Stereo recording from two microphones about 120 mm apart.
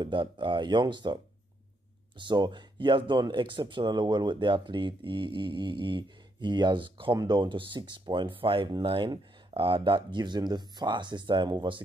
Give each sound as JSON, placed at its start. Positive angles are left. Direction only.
{"t": 0.0, "sound": "speech", "side_deg": -45}